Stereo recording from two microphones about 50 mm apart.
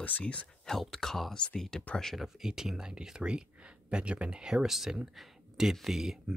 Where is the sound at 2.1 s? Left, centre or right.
Centre.